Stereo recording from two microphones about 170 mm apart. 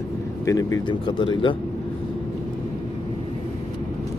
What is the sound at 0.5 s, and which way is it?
Speech, 20° left (ahead or behind).